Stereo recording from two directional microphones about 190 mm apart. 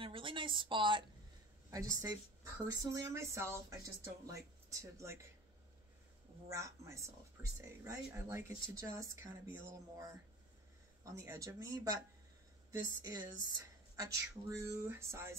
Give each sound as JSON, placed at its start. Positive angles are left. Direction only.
{"t": 0.0, "sound": "a sound", "side_deg": -25}
{"t": 1.7, "sound": "speech", "side_deg": -15}
{"t": 6.5, "sound": "speech", "side_deg": -15}
{"t": 11.1, "sound": "speech", "side_deg": -15}